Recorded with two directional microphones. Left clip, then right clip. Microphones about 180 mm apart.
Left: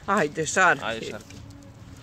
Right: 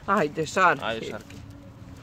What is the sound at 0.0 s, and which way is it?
Speech, 5° left (ahead or behind).